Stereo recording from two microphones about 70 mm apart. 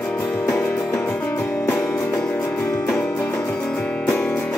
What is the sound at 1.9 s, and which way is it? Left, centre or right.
Music, left.